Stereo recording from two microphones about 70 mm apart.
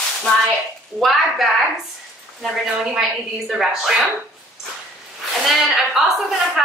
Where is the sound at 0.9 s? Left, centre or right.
Centre.